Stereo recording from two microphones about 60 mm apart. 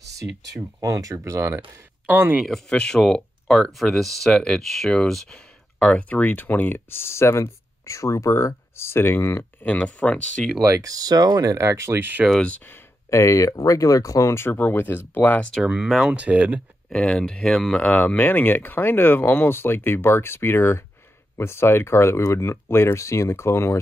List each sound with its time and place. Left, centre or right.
0.7 s speech: right
2.0 s speech: right
2.4 s speech: centre; by 9.7 s left
9.7 s speech: left
10.7 s speech: right
11.5 s speech: right
12.0 s speech: right
12.4 s speech: left
13.1 s speech: left
14.5 s speech: left
15.6 s speech: centre
16.9 s speech: centre
17.8 s speech: left